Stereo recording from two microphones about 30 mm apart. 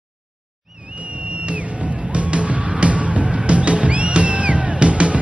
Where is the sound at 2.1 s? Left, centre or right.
Right.